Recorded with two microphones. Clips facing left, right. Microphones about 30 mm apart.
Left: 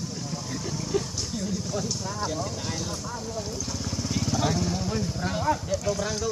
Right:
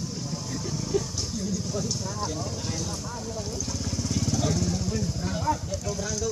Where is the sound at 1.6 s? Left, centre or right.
Centre.